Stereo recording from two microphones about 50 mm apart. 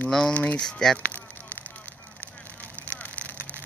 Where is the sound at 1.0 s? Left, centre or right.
Left.